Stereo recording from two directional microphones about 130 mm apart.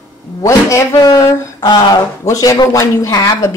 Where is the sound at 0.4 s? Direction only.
25° left (ahead or behind).